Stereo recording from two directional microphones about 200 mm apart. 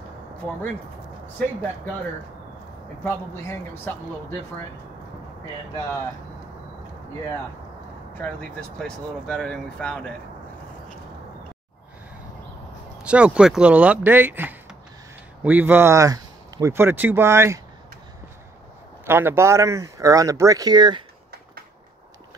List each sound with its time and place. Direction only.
3.0 s speech: 10° left (ahead or behind)
8.2 s speech: 5° left (ahead or behind)
13.0 s speech: 5° right (ahead or behind)
19.0 s speech: 10° right (ahead or behind)